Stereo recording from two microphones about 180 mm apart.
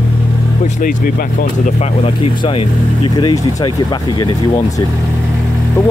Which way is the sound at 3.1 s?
20° left (ahead or behind).